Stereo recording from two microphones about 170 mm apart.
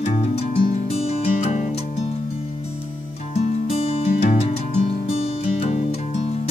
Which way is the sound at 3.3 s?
40° left (ahead or behind).